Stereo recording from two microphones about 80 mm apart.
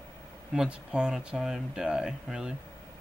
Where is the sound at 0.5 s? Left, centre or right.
Centre.